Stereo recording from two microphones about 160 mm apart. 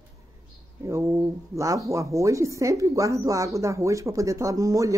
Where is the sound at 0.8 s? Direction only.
20° right (ahead or behind).